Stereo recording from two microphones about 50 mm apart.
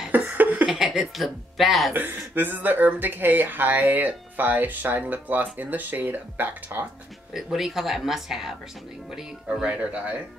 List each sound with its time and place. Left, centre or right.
0.1 s a sound: right
0.7 s speech: centre
2.0 s speech: right
7.5 s speech: centre
9.5 s speech: right